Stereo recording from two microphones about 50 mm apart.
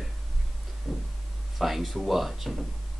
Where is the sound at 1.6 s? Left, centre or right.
Centre.